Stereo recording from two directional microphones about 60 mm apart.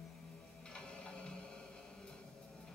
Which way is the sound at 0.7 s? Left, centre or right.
Centre.